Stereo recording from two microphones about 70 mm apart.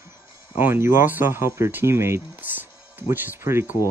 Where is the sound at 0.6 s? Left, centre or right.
Right.